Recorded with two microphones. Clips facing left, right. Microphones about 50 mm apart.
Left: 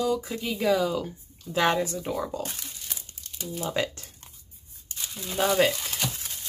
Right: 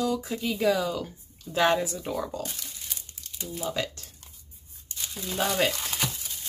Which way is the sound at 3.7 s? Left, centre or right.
Left.